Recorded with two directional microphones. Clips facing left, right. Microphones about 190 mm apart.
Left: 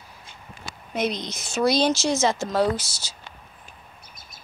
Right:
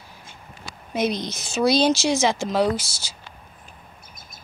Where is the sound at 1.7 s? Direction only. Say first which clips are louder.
Right 3 dB; 30° right (ahead or behind).